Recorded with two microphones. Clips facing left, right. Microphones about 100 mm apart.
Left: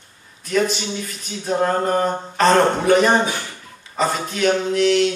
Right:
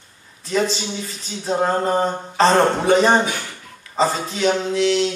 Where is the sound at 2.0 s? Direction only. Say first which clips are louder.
Left 1 dB; centre (ahead or behind).